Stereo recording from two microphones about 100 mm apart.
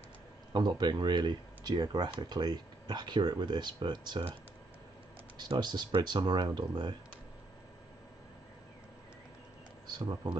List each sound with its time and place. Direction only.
0.5 s speech: 45° right (ahead or behind)
5.6 s speech: 45° right (ahead or behind)
9.8 s speech: 45° right (ahead or behind)